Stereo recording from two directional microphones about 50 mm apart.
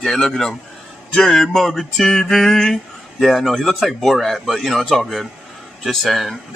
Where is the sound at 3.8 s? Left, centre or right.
Centre.